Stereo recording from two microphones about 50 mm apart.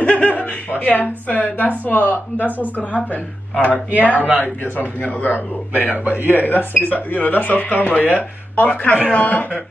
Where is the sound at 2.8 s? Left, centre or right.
Left.